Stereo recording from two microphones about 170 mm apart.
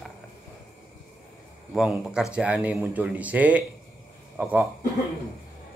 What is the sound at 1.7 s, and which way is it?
A man's voice, 5° right (ahead or behind).